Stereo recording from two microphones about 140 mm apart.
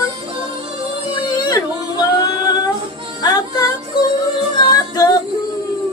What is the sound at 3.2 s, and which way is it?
Music, 25° left (ahead or behind).